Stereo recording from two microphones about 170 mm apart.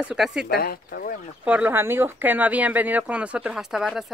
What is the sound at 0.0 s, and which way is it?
Speech, 5° right (ahead or behind).